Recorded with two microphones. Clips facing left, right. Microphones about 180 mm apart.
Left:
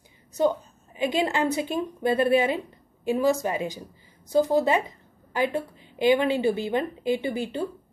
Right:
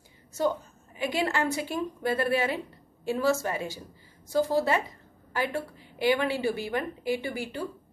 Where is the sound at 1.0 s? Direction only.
20° left (ahead or behind).